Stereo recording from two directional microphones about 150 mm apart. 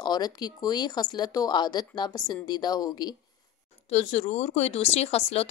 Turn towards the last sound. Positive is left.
turn(degrees=45)  # may be behind; listen again after turning